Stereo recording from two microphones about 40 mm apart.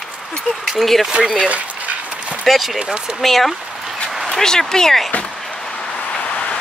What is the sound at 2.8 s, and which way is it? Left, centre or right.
Speech, centre.